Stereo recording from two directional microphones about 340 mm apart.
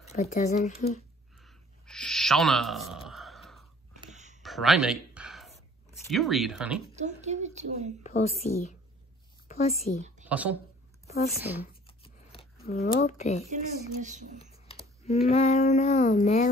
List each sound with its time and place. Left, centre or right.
0.0 s speech: centre
1.4 s a sound: centre
4.0 s a sound: right
4.4 s a sound: centre
6.0 s speech: centre
7.0 s a woman's voice: centre
8.0 s speech: centre
10.2 s speech: centre
11.1 s speech: centre
12.0 s scissors: centre
12.6 s speech: left
14.0 s a woman's voice: right
14.7 s speech: centre